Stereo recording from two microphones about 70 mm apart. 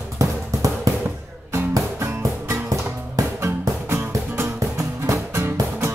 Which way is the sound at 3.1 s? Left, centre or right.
Right.